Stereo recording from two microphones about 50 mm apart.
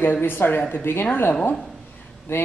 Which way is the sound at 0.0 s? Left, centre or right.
Left.